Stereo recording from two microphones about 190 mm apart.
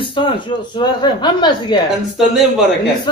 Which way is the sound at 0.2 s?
25° left (ahead or behind).